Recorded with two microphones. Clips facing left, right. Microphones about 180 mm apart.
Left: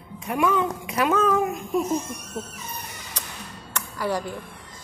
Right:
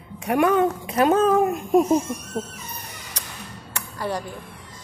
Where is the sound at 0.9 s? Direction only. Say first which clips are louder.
Right 3 dB; 35° right (ahead or behind).